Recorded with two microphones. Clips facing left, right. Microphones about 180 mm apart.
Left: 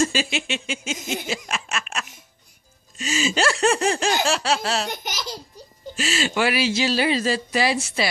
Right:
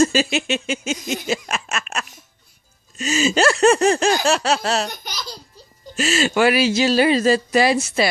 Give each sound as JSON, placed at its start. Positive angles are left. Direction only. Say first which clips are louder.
{"t": 0.0, "sound": "speech", "louder": "right 5 dB", "side_deg": -40}
{"t": 5.9, "sound": "speech", "louder": "right 5 dB", "side_deg": -45}